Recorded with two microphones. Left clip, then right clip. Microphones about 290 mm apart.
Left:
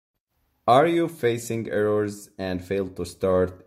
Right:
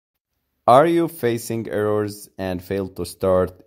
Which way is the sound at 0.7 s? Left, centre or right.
Right.